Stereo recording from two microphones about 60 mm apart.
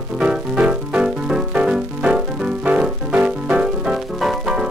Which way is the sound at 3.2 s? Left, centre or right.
Right.